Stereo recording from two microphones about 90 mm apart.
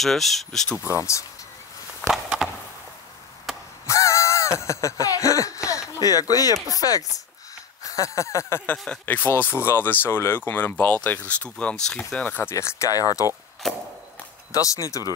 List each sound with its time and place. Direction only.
0.0 s speech: centre (ahead or behind)
0.8 s speech: 35° left (ahead or behind)
2.2 s a sound: 10° right (ahead or behind)
3.8 s a sound: 35° left (ahead or behind)
4.6 s speech: 35° left (ahead or behind)
7.8 s a sound: 40° left (ahead or behind)
8.7 s speech: 5° left (ahead or behind)
9.0 s speech: 25° left (ahead or behind)
12.5 s speech: 35° left (ahead or behind)
13.6 s chop: 5° left (ahead or behind)
14.5 s speech: 40° left (ahead or behind)